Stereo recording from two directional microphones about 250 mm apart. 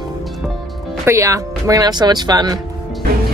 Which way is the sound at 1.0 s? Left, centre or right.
Centre.